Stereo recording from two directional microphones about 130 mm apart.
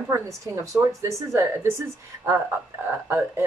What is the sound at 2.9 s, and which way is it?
Speech, 20° right (ahead or behind).